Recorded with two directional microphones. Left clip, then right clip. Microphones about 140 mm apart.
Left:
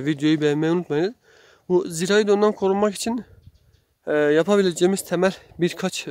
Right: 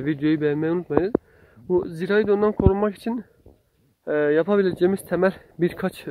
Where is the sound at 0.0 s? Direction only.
40° left (ahead or behind).